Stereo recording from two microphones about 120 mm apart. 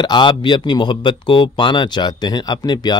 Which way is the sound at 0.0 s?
40° left (ahead or behind).